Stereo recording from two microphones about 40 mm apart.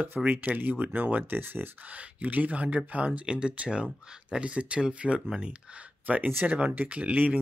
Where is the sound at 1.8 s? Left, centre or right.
Right.